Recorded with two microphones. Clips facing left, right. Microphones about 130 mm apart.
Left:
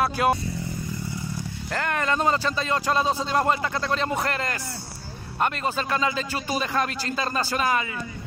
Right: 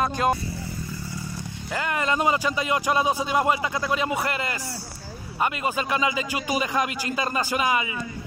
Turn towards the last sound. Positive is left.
turn(degrees=-10)  # may be behind; listen again after turning